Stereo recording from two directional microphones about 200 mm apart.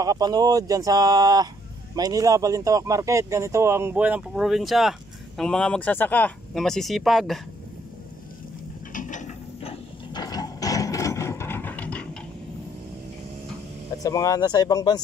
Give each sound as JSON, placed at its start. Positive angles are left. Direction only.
{"t": 0.0, "sound": "speech", "side_deg": -20}
{"t": 8.9, "sound": "mechanisms", "side_deg": 40}
{"t": 14.0, "sound": "speech", "side_deg": 15}